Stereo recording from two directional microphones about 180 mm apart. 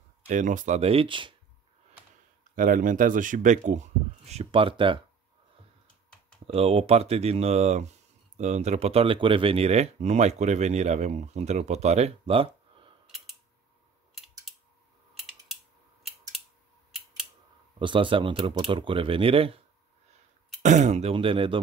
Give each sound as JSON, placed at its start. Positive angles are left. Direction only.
{"t": 0.3, "sound": "speech", "side_deg": -45}
{"t": 2.5, "sound": "speech", "side_deg": -50}
{"t": 6.4, "sound": "speech", "side_deg": -35}
{"t": 13.0, "sound": "scissors", "side_deg": 0}
{"t": 17.7, "sound": "speech", "side_deg": -25}
{"t": 20.6, "sound": "speech", "side_deg": -40}